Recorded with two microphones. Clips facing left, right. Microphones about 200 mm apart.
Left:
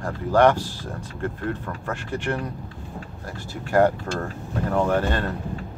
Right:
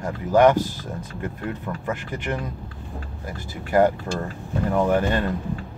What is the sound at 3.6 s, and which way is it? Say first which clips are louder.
Speech: even; 10° right (ahead or behind).